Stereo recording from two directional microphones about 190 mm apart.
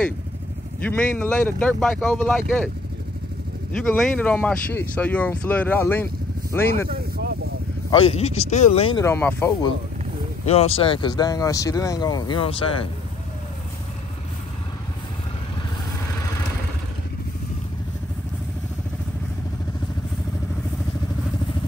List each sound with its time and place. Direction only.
0.8 s speech: 5° left (ahead or behind)
3.7 s speech: 5° left (ahead or behind)
6.9 s a sound: 55° right (ahead or behind)
7.9 s speech: 30° left (ahead or behind)
9.0 s speech: 15° left (ahead or behind)
10.4 s speech: 35° left (ahead or behind)